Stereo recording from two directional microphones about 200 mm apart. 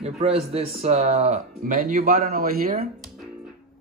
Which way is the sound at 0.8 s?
30° right (ahead or behind).